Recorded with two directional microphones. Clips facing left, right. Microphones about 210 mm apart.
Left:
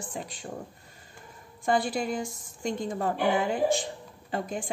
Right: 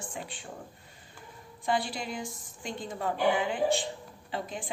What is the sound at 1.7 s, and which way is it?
A woman's voice, 50° left (ahead or behind).